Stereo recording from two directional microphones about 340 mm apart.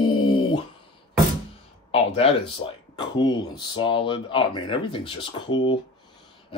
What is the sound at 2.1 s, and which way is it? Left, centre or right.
Speech, centre.